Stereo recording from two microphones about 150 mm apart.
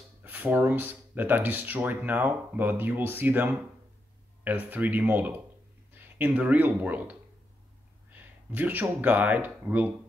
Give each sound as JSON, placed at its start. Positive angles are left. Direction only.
{"t": 0.2, "sound": "speech", "side_deg": -10}